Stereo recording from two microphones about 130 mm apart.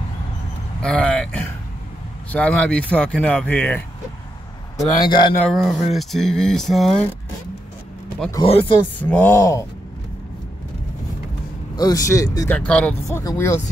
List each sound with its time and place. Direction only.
0.8 s speech: 5° left (ahead or behind)
4.9 s speech: 35° left (ahead or behind)
5.4 s speech: centre (ahead or behind)
8.5 s speech: 50° left (ahead or behind)
9.0 s speech: 15° left (ahead or behind)
11.7 s speech: 30° left (ahead or behind)
12.4 s speech: 10° left (ahead or behind)
13.2 s speech: 25° left (ahead or behind)